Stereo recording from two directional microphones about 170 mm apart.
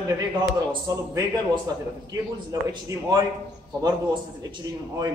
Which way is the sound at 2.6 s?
20° right (ahead or behind).